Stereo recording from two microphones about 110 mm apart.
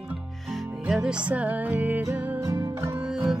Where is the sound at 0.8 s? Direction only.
5° right (ahead or behind).